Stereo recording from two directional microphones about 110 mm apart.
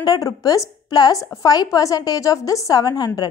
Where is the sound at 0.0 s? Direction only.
35° left (ahead or behind).